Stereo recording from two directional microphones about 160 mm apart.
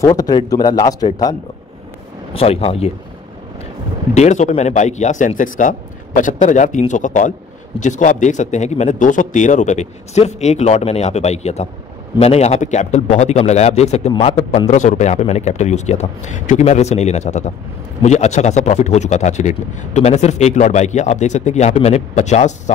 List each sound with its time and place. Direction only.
0.0 s a man's voice: 25° left (ahead or behind)
2.3 s speech: 35° left (ahead or behind)
4.1 s a man's voice: 45° left (ahead or behind)